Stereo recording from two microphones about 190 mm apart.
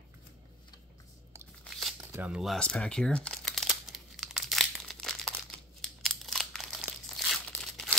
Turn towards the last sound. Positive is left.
turn(degrees=5)  # may be behind; listen again after turning